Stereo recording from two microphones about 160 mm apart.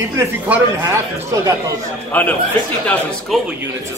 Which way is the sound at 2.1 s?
10° left (ahead or behind).